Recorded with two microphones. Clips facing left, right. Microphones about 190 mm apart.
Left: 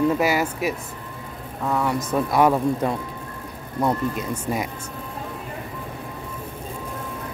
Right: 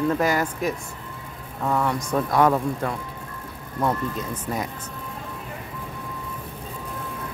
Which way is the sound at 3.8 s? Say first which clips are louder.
Left 2 dB; 10° left (ahead or behind).